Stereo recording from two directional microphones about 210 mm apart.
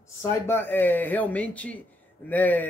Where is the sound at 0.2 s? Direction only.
10° left (ahead or behind).